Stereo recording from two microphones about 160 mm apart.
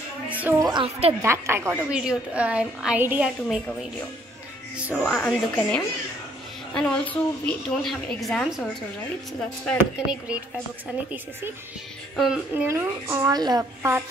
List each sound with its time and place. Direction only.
0.3 s a woman's voice: 10° right (ahead or behind)
5.6 s a woman's voice: 10° left (ahead or behind)
9.8 s a woman's voice: 10° right (ahead or behind)
12.2 s a woman's voice: 5° right (ahead or behind)
12.6 s a woman's voice: 15° right (ahead or behind)